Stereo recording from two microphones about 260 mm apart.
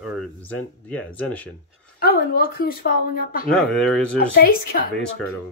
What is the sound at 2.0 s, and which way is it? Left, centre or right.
Speech, left.